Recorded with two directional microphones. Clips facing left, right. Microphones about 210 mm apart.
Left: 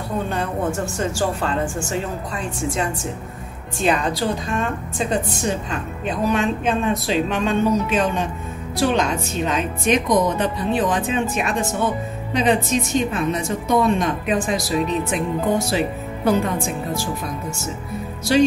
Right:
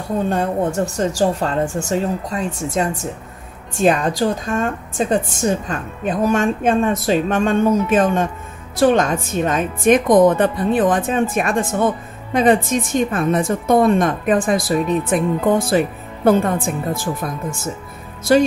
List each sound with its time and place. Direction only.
0.3 s a woman's voice: 40° right (ahead or behind)